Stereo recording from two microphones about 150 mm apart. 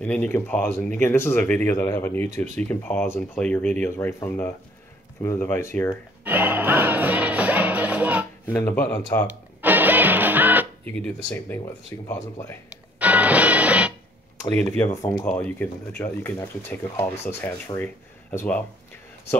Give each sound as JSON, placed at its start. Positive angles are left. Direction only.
{"t": 0.0, "sound": "speech", "side_deg": 10}
{"t": 6.2, "sound": "music", "side_deg": -15}
{"t": 8.5, "sound": "speech", "side_deg": 15}
{"t": 9.6, "sound": "music", "side_deg": -10}
{"t": 10.9, "sound": "speech", "side_deg": 10}
{"t": 13.0, "sound": "music", "side_deg": -10}
{"t": 14.6, "sound": "speech", "side_deg": 10}
{"t": 15.0, "sound": "speech", "side_deg": 25}
{"t": 15.2, "sound": "speech", "side_deg": 10}